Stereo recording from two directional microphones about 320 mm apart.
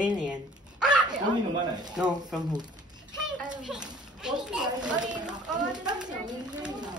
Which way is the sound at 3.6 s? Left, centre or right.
Centre.